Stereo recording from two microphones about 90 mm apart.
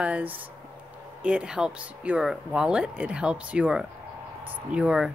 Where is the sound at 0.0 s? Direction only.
15° right (ahead or behind).